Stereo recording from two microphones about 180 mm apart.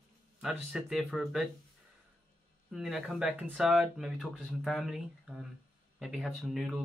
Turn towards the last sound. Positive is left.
turn(degrees=0)  # may be behind; listen again after turning